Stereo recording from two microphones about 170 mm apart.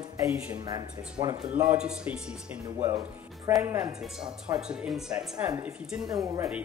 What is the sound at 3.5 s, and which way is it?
Speech, 20° right (ahead or behind).